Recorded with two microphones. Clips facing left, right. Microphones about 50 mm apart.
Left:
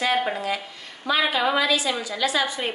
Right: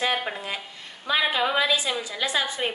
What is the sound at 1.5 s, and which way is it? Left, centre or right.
A woman's voice, right.